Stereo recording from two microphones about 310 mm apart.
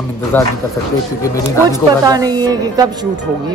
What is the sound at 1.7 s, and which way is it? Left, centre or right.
Speech, centre.